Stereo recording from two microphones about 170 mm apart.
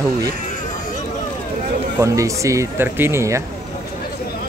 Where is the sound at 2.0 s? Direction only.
20° right (ahead or behind).